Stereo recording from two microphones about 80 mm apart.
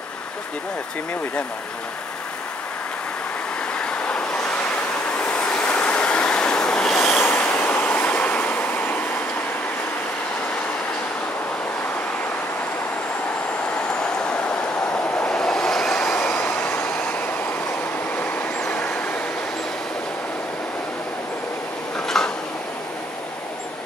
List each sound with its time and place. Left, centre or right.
3.7 s vehicle: centre
5.2 s waves: centre
7.2 s vehicle: left
13.9 s vehicle: centre
15.2 s train: centre
16.3 s vehicle: left
18.7 s vehicle: centre
22.0 s a sound: centre